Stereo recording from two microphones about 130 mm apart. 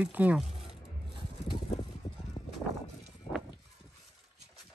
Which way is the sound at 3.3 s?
50° left (ahead or behind).